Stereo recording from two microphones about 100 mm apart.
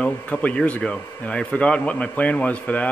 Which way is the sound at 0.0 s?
10° left (ahead or behind).